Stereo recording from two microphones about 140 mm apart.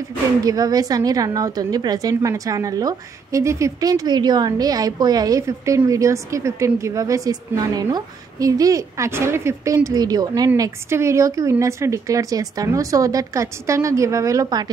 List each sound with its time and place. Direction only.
0.4 s a woman's voice: 25° right (ahead or behind)